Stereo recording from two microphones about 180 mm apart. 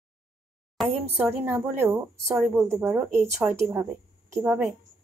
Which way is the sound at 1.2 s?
15° right (ahead or behind).